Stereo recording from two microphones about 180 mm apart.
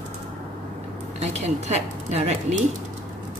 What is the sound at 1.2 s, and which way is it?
Speech, 40° right (ahead or behind).